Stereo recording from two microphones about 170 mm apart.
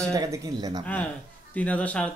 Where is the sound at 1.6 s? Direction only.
10° left (ahead or behind).